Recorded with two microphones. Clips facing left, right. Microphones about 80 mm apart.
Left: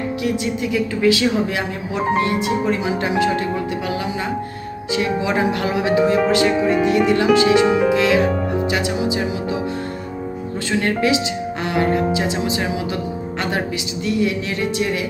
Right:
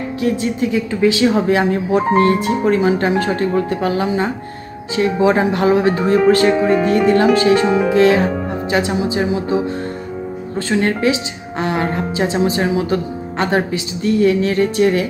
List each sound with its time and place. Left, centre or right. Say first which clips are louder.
0.2 s speech: right 6 dB; right
10.7 s speech: right 2 dB; right